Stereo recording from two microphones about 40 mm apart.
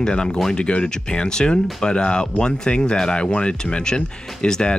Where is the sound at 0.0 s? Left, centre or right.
Left.